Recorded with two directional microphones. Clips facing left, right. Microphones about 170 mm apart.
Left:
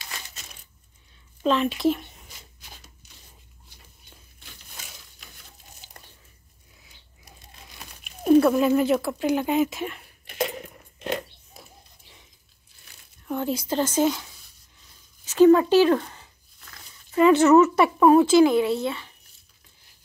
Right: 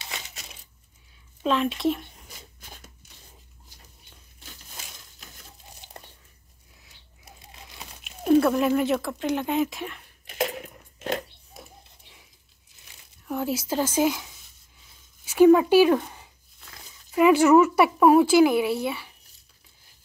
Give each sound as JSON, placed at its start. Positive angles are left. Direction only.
{"t": 0.0, "sound": "coin", "side_deg": -20}
{"t": 1.4, "sound": "speech", "side_deg": 0}
{"t": 5.8, "sound": "a sound", "side_deg": 0}
{"t": 8.2, "sound": "speech", "side_deg": 0}
{"t": 13.3, "sound": "speech", "side_deg": -5}
{"t": 15.2, "sound": "a sound", "side_deg": -10}
{"t": 17.1, "sound": "speech", "side_deg": -10}